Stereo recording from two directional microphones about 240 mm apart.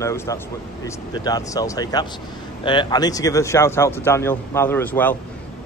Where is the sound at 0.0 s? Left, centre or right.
Centre.